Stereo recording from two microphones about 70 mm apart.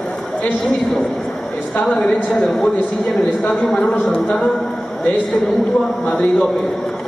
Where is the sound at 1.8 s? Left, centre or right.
Centre.